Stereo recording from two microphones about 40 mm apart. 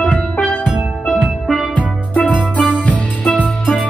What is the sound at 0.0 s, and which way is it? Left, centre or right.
Music, centre.